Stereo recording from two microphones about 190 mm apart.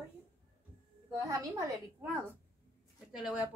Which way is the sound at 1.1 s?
15° right (ahead or behind).